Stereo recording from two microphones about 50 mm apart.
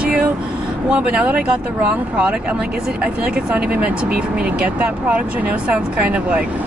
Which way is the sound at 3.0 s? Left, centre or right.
Right.